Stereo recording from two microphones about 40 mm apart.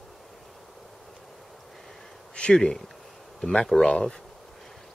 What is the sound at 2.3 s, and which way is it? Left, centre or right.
Speech, left.